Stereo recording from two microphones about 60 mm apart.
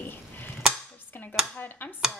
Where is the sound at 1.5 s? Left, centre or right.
Left.